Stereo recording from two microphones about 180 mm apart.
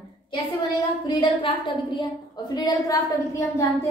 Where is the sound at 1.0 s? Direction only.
25° left (ahead or behind).